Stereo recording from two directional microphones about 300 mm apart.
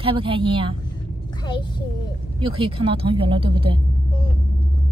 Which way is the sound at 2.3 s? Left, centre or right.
Centre.